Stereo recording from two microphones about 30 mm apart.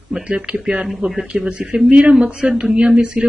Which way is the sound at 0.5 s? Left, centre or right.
Right.